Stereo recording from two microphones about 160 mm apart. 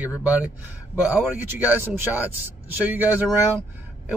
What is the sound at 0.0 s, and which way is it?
Speech, 10° right (ahead or behind).